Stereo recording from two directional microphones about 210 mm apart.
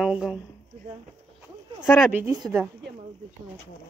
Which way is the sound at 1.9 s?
5° right (ahead or behind).